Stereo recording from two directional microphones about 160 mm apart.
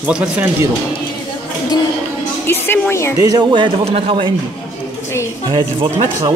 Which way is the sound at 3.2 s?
25° right (ahead or behind).